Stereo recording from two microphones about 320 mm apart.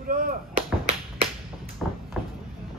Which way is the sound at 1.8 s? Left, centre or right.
Centre.